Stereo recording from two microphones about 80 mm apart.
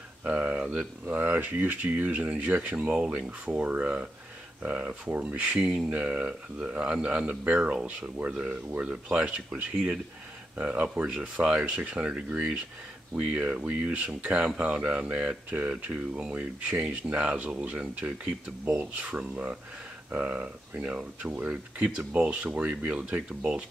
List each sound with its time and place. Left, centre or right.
0.2 s speech: centre